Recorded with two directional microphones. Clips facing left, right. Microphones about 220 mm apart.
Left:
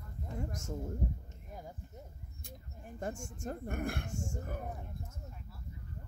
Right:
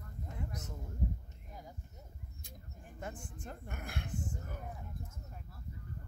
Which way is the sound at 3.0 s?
45° left (ahead or behind).